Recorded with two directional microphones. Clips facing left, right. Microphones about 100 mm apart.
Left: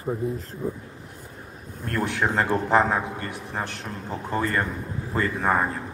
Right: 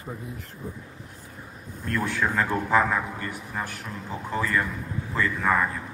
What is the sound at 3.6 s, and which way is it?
Speech, 40° left (ahead or behind).